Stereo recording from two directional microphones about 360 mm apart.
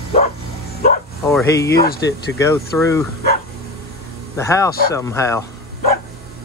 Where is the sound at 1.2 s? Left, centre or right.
Centre.